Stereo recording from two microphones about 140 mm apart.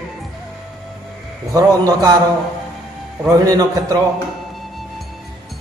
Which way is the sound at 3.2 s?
25° right (ahead or behind).